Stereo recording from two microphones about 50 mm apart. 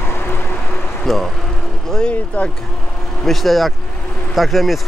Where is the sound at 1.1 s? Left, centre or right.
Centre.